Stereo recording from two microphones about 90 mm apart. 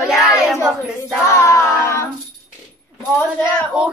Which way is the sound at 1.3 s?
30° left (ahead or behind).